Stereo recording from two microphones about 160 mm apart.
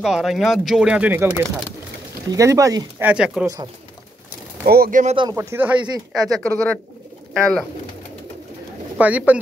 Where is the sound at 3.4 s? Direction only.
20° right (ahead or behind).